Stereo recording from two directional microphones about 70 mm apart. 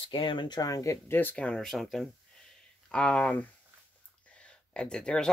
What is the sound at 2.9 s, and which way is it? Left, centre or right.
Speech, centre.